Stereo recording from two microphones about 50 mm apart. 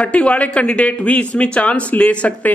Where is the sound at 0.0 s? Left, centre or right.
Left.